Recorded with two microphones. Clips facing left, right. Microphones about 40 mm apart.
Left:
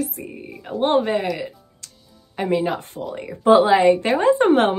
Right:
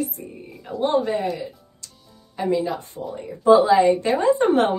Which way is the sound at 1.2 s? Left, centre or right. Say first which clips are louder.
Left 1 dB; left.